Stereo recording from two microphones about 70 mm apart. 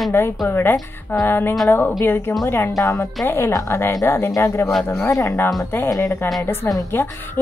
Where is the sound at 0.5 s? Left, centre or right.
Left.